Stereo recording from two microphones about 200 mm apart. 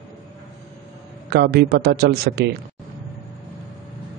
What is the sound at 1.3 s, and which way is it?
Speech, 55° right (ahead or behind).